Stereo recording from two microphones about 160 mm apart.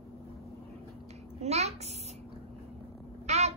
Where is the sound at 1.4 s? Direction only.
40° right (ahead or behind).